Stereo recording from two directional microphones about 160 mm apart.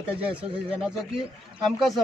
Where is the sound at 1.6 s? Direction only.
Centre (ahead or behind).